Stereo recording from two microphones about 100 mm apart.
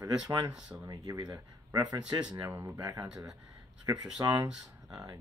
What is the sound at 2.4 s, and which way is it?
Speech, 25° right (ahead or behind).